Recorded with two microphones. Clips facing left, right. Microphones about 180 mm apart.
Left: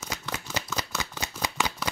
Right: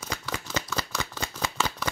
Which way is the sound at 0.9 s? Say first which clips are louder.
Right 1 dB; 10° left (ahead or behind).